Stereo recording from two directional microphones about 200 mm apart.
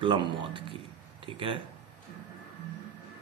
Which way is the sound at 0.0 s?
25° right (ahead or behind).